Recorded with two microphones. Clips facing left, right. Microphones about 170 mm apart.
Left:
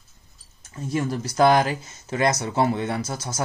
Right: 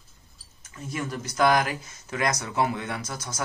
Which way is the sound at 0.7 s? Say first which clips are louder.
Left 6 dB; 30° left (ahead or behind).